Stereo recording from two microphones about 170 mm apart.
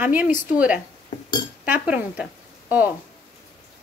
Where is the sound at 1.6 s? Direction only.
10° right (ahead or behind).